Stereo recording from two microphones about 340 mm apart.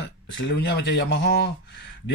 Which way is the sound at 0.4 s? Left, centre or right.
Left.